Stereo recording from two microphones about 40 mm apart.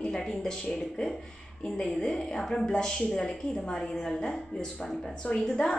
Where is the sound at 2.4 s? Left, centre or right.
Centre.